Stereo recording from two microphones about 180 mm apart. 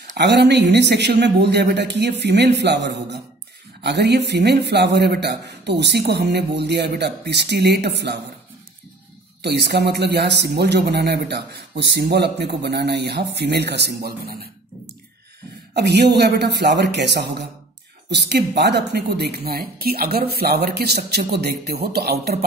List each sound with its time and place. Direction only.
0.2 s speech: 70° right (ahead or behind)
9.4 s speech: 70° right (ahead or behind)
15.7 s speech: 65° right (ahead or behind)